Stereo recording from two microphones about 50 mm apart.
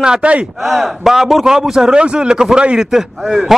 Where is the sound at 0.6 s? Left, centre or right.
Centre.